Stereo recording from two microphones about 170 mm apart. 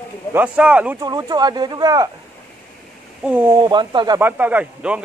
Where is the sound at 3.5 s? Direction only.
25° right (ahead or behind).